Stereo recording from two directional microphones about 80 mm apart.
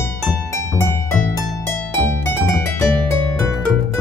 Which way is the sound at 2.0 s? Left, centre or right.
Left.